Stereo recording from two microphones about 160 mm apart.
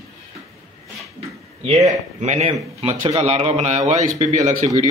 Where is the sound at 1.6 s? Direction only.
45° right (ahead or behind).